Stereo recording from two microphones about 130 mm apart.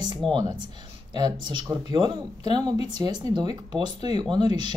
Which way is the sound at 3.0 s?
35° right (ahead or behind).